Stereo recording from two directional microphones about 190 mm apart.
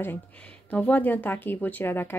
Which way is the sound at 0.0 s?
10° left (ahead or behind).